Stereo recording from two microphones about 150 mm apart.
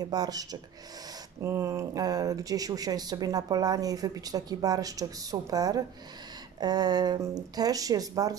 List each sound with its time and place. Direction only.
0.0 s speech: 25° right (ahead or behind)